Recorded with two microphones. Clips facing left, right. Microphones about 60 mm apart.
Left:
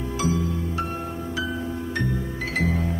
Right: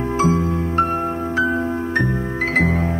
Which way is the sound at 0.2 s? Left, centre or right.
Right.